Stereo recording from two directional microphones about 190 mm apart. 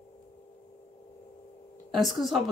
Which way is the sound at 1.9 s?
Centre (ahead or behind).